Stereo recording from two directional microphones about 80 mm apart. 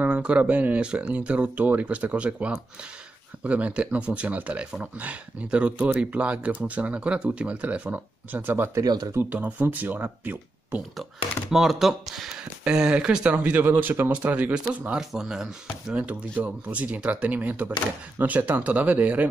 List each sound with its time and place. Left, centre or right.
0.0 s speech: centre
8.8 s speech: right
9.1 s speech: right
11.5 s speech: centre